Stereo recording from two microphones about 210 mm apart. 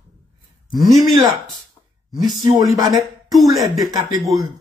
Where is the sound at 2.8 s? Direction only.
15° right (ahead or behind).